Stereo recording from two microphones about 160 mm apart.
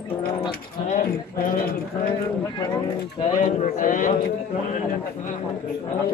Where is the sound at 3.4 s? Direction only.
55° left (ahead or behind).